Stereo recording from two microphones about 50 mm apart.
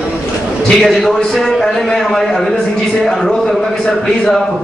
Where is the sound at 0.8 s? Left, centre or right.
Centre.